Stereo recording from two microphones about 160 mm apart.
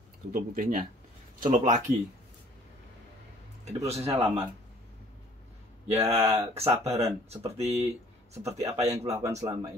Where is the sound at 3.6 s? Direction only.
40° right (ahead or behind).